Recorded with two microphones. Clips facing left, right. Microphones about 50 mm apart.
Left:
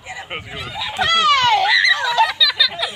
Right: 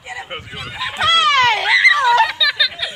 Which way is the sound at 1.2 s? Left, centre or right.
Right.